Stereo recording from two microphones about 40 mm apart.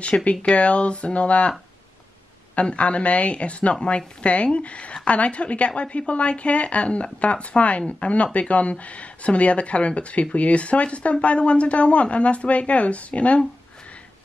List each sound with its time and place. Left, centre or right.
0.0 s speech: left
2.5 s speech: left